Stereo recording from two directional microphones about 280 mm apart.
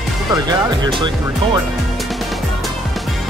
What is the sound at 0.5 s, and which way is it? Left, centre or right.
Speech, centre.